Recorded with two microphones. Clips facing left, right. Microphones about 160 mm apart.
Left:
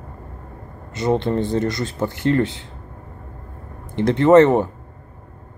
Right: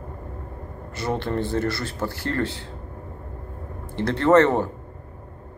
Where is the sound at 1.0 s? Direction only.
20° left (ahead or behind).